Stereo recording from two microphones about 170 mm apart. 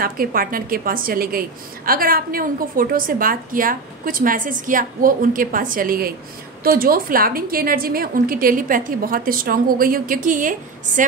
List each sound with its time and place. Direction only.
0.0 s a woman's voice: 60° right (ahead or behind)